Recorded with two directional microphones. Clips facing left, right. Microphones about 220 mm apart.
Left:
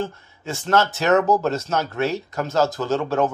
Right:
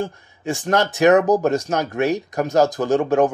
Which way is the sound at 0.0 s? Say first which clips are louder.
Right 2 dB; 15° right (ahead or behind).